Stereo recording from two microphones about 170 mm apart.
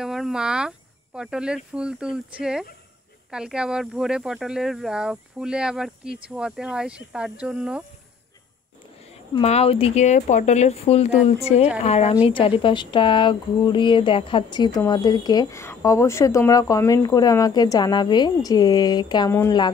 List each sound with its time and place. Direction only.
0.0 s speech: centre (ahead or behind)
9.3 s speech: 40° left (ahead or behind); by 19.7 s 20° left (ahead or behind)